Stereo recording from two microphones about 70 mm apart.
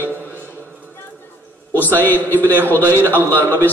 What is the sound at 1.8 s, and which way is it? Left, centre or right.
A man's voice, left.